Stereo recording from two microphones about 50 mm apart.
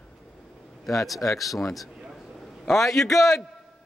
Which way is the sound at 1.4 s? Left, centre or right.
Centre.